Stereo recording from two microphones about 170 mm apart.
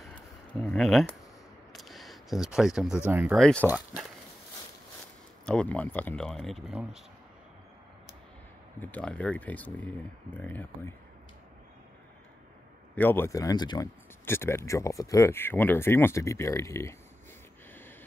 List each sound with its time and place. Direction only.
0.1 s a sound: 10° left (ahead or behind)
3.1 s speech: 10° right (ahead or behind)
3.3 s speech: 5° left (ahead or behind)
5.4 s speech: 5° left (ahead or behind)
8.7 s speech: 10° left (ahead or behind)
12.9 s speech: 10° left (ahead or behind)